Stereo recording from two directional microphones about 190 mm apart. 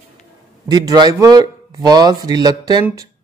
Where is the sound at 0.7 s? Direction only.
20° right (ahead or behind).